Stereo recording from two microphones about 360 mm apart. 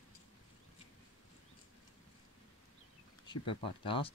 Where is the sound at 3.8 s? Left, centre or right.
Centre.